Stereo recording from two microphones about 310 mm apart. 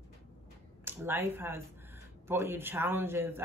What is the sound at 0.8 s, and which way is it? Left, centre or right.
Speech, centre.